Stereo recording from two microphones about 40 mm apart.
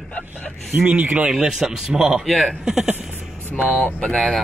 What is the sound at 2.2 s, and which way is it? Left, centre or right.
Speech, centre.